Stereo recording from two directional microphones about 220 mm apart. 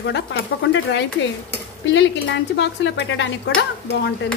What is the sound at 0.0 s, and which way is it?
Speech, 55° left (ahead or behind).